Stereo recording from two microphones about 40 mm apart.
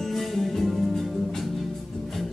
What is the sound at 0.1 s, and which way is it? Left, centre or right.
Music, centre.